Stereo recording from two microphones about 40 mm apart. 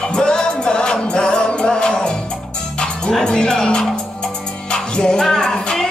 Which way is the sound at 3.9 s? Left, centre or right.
Centre.